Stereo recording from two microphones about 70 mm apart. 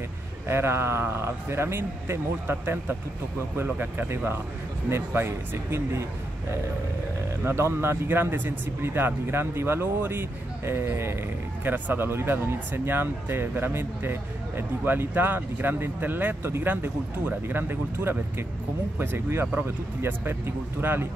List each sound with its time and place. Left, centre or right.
0.5 s speech: right
7.4 s speech: right